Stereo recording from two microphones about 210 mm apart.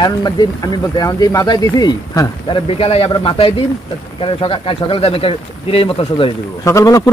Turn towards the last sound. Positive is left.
turn(degrees=15)  # may be behind; listen again after turning